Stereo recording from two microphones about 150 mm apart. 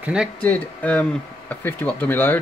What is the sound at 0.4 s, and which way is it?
Speech, 10° left (ahead or behind).